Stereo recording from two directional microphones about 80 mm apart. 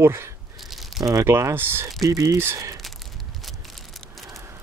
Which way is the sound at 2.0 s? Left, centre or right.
Right.